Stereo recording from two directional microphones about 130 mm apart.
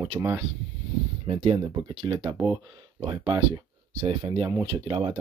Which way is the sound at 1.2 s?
45° right (ahead or behind).